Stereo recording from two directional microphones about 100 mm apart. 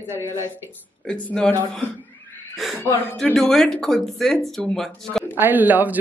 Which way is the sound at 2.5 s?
Centre (ahead or behind).